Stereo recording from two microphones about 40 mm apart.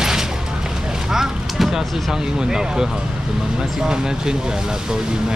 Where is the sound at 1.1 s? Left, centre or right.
Centre.